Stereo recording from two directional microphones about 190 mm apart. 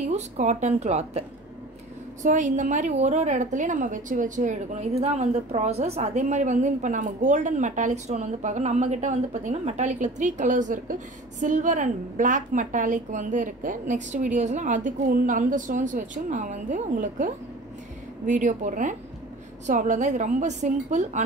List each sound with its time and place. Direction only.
0.0 s a woman's voice: 40° right (ahead or behind)
2.2 s a woman's voice: 40° right (ahead or behind)